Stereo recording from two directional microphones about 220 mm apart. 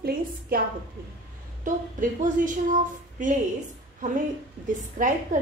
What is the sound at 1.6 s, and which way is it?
A woman's voice, 35° right (ahead or behind).